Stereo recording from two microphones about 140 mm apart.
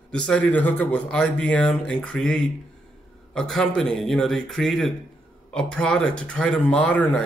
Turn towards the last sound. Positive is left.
turn(degrees=10)  # may be behind; listen again after turning